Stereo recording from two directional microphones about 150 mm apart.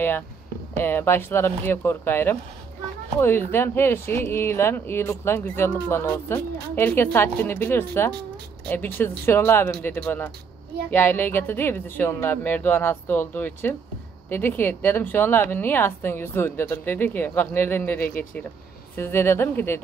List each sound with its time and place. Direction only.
0.7 s speech: 15° left (ahead or behind)